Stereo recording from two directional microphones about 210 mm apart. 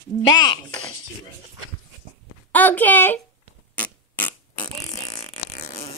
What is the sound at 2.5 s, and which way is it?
Speech, 10° left (ahead or behind).